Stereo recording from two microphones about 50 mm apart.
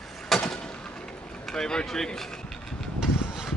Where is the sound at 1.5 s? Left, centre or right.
Centre.